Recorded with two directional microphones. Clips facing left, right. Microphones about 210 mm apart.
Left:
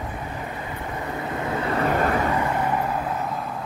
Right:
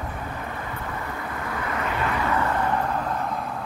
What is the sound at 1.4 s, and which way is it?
Vehicle, 25° left (ahead or behind).